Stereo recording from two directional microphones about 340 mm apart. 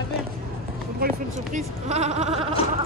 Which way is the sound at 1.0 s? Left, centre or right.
Right.